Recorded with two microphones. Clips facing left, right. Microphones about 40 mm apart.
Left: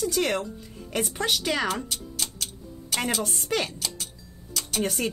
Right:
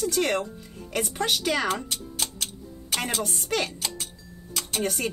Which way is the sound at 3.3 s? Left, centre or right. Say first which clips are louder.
Even; centre.